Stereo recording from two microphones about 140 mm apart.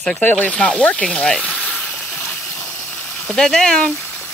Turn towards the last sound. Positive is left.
turn(degrees=10)  # may be behind; listen again after turning